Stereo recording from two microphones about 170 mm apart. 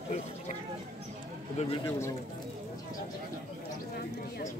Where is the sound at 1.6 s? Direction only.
45° left (ahead or behind).